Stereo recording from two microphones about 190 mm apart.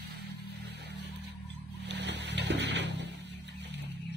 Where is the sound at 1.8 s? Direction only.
65° right (ahead or behind).